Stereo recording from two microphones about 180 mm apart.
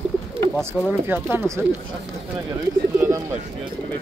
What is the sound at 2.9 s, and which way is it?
Bird, 15° right (ahead or behind).